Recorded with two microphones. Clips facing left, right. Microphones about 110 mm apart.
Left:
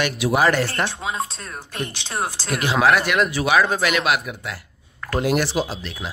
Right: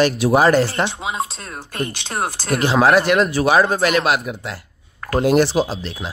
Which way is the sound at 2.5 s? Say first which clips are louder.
Right 3 dB; 30° right (ahead or behind).